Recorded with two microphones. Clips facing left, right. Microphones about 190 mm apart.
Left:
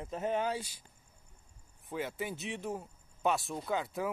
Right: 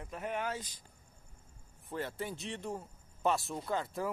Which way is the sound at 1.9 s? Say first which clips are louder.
Left 1 dB; centre (ahead or behind).